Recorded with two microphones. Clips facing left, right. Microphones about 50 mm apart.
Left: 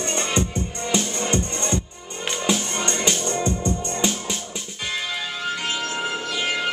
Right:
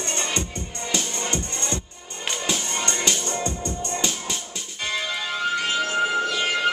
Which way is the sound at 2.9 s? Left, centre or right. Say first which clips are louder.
Left 2 dB; centre.